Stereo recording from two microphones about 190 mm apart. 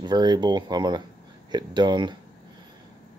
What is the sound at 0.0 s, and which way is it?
Speech, 20° right (ahead or behind).